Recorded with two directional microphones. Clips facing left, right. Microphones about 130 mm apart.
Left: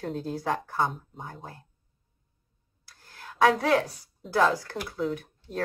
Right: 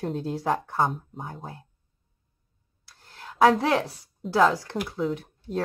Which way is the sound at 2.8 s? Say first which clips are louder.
Right 2 dB; 25° right (ahead or behind).